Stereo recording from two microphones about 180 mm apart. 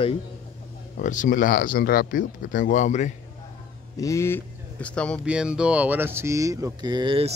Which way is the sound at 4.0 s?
15° left (ahead or behind).